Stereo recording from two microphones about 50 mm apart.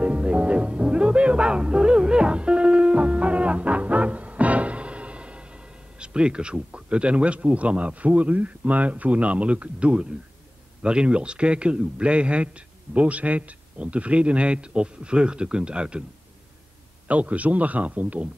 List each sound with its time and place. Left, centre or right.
0.0 s music: right
10.8 s speech: centre
17.1 s speech: right